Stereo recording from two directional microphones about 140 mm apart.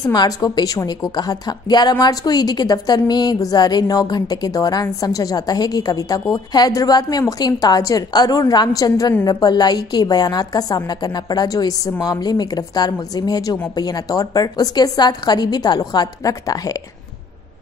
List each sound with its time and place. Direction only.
0.0 s a woman's voice: 30° left (ahead or behind)